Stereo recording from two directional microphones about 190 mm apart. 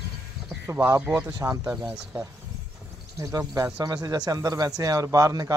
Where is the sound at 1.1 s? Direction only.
10° right (ahead or behind).